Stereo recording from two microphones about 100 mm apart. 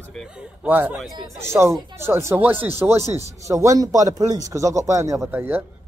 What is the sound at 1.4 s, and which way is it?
Speech, 30° right (ahead or behind).